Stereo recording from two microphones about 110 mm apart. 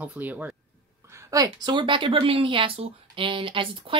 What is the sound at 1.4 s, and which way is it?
Speech, 40° right (ahead or behind).